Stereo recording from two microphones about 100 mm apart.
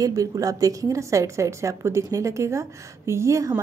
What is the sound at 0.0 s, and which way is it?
A woman's voice, 35° right (ahead or behind).